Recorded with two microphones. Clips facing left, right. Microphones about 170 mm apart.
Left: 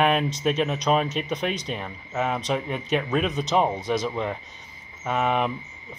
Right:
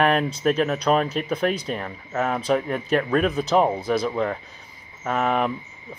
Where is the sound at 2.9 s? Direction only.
Centre (ahead or behind).